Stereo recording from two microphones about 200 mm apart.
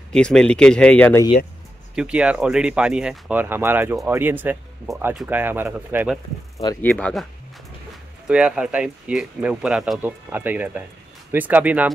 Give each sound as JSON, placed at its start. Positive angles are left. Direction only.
{"t": 0.1, "sound": "speech", "side_deg": 5}
{"t": 2.0, "sound": "speech", "side_deg": -5}
{"t": 6.6, "sound": "speech", "side_deg": 20}
{"t": 7.0, "sound": "speech", "side_deg": 5}
{"t": 8.3, "sound": "speech", "side_deg": -5}